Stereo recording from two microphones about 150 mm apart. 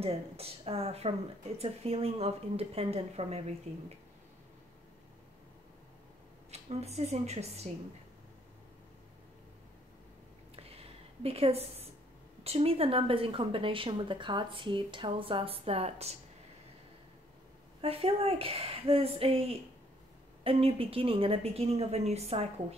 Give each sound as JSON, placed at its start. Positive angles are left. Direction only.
{"t": 0.0, "sound": "speech", "side_deg": -40}
{"t": 6.5, "sound": "a woman's voice", "side_deg": -45}
{"t": 10.5, "sound": "a sound", "side_deg": -40}
{"t": 12.4, "sound": "speech", "side_deg": -40}
{"t": 17.8, "sound": "a woman's voice", "side_deg": -40}